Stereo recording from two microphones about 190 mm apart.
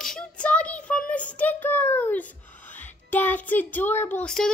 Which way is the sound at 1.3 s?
10° left (ahead or behind).